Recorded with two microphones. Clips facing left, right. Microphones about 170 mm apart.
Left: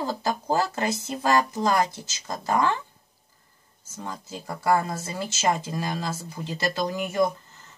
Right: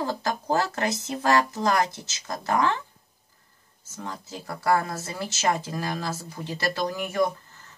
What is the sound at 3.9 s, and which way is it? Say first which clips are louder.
Speech: even; 15° left (ahead or behind).